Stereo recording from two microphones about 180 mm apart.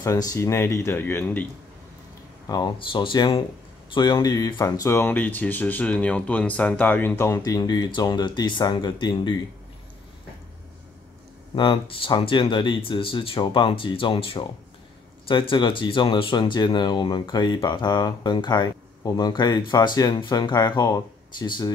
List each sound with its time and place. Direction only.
0.0 s speech: 20° left (ahead or behind)
2.4 s speech: 20° left (ahead or behind)
11.5 s speech: 25° left (ahead or behind)